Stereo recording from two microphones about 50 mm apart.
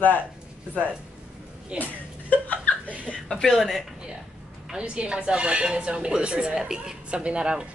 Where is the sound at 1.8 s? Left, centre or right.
Left.